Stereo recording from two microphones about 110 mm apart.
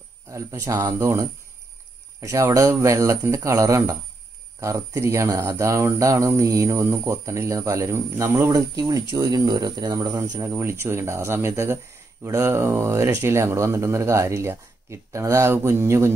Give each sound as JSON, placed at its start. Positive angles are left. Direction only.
{"t": 0.3, "sound": "speech", "side_deg": -30}